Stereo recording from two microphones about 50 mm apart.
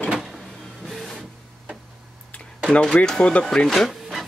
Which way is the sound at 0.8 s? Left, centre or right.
Centre.